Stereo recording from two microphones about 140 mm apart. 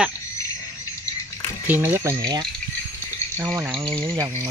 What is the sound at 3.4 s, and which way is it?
Speech, 20° right (ahead or behind).